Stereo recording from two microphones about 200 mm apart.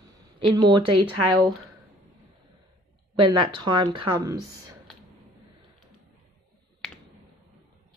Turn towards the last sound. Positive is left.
turn(degrees=5)  # may be behind; listen again after turning